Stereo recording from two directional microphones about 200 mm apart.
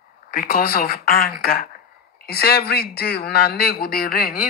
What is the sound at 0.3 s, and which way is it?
Speech, 45° left (ahead or behind).